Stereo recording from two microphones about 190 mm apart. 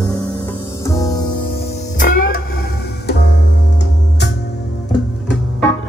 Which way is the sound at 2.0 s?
45° left (ahead or behind).